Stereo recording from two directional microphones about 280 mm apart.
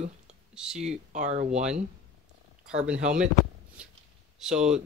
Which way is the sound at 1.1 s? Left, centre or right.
Right.